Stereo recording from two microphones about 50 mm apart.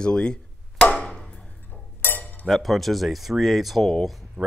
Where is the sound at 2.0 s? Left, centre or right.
Left.